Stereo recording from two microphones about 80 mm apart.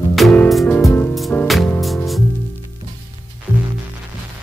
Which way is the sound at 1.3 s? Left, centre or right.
Left.